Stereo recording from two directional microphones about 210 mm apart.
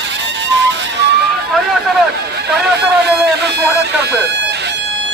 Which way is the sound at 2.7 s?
50° right (ahead or behind).